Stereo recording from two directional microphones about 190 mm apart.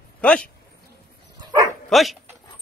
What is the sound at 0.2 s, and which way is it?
Speech, 5° left (ahead or behind).